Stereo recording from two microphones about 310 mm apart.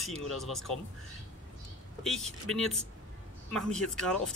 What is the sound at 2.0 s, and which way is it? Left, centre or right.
Speech, centre.